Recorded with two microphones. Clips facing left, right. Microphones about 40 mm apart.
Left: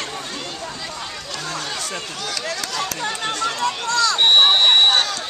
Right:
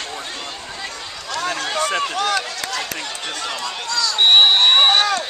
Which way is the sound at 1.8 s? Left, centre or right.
Right.